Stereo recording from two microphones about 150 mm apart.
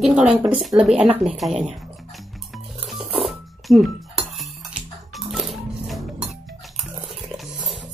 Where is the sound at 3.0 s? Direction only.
40° right (ahead or behind).